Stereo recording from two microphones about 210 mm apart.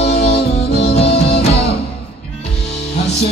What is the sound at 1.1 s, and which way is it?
Music, 55° left (ahead or behind).